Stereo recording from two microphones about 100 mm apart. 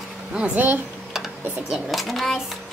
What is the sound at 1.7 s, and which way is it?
Speech, centre (ahead or behind).